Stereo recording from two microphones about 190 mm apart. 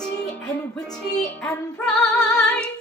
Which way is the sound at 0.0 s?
5° left (ahead or behind).